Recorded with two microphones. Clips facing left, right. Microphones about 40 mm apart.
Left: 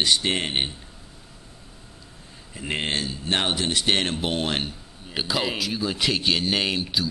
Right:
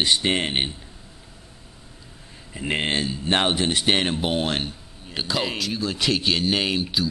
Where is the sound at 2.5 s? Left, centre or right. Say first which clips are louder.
Right 3 dB; centre.